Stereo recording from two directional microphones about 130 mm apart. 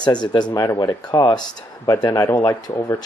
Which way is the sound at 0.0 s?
35° left (ahead or behind).